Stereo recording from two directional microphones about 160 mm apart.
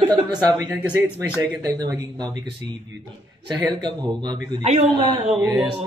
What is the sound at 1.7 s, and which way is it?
Speech, 20° right (ahead or behind).